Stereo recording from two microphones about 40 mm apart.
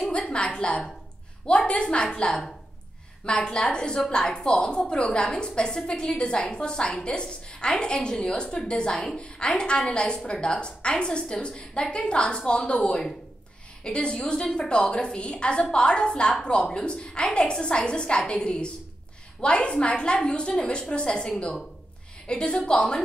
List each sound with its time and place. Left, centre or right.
0.1 s a woman's voice: left